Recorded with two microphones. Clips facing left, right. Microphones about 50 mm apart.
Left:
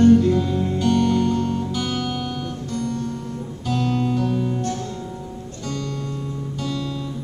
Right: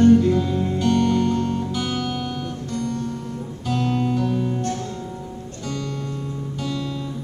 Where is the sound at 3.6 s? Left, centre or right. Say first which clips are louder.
Even; centre.